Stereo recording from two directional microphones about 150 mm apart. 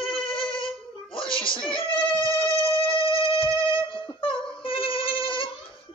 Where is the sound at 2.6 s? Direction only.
35° left (ahead or behind).